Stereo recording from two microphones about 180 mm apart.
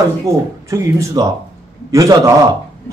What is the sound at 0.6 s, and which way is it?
A man's voice, 15° right (ahead or behind).